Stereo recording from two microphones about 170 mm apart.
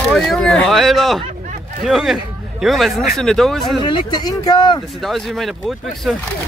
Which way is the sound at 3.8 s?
25° left (ahead or behind).